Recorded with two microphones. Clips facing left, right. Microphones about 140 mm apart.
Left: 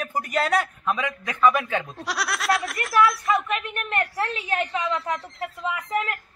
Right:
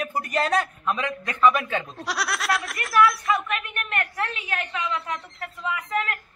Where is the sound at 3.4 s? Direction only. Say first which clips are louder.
Left 2 dB; 25° left (ahead or behind).